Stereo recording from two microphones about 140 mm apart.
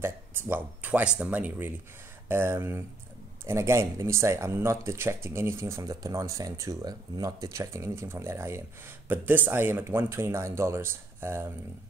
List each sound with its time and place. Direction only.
0.0 s speech: 15° right (ahead or behind)